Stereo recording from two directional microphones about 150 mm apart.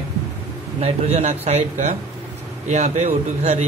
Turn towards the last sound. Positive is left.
turn(degrees=-45)  # may be behind; listen again after turning